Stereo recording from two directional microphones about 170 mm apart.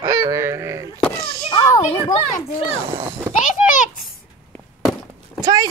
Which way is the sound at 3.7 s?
50° left (ahead or behind).